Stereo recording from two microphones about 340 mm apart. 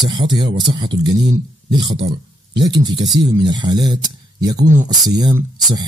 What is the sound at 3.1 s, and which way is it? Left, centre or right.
Speech, centre.